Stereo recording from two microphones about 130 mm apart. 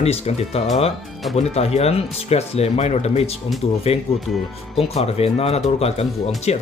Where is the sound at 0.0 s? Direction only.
55° left (ahead or behind).